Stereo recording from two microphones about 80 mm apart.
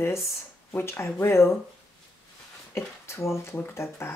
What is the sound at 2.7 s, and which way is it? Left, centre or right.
Speech, left.